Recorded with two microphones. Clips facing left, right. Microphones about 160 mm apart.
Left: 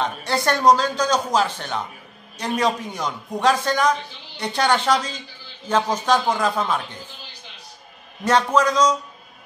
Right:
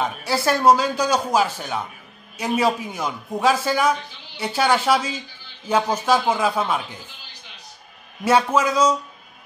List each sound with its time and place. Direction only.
0.0 s a man's voice: 5° right (ahead or behind)
8.2 s a man's voice: 10° right (ahead or behind)